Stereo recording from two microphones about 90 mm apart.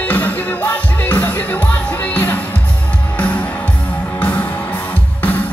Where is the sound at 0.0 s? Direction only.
20° left (ahead or behind).